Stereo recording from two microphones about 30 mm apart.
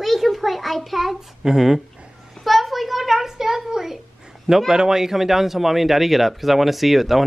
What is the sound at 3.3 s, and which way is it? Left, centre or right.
Speech, centre.